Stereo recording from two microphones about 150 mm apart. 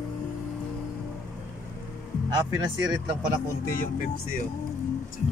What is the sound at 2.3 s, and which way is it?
Speech, 30° right (ahead or behind).